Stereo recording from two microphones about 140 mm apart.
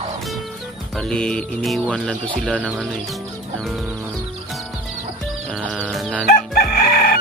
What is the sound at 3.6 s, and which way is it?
Speech, centre (ahead or behind).